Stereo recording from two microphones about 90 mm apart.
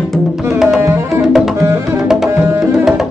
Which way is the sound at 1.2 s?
5° right (ahead or behind).